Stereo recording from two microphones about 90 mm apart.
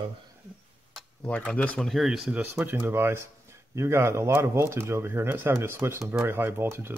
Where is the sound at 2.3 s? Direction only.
15° right (ahead or behind).